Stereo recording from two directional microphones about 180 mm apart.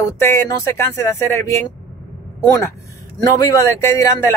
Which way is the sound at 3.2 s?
20° left (ahead or behind).